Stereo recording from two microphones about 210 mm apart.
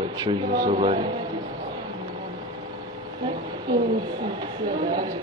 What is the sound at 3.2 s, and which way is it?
A woman's voice, 20° right (ahead or behind).